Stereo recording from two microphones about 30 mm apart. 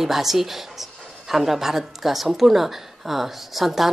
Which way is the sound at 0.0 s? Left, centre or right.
Centre.